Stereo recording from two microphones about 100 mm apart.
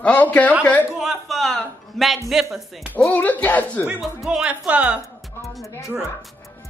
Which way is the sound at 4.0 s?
Centre (ahead or behind).